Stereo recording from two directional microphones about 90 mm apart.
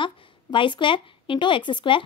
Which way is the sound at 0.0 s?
65° left (ahead or behind).